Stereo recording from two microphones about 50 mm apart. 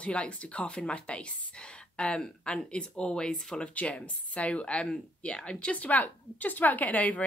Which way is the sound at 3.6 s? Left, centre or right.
Left.